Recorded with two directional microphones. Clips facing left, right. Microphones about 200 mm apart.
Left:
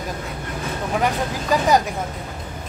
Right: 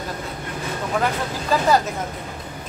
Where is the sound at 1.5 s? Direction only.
15° left (ahead or behind).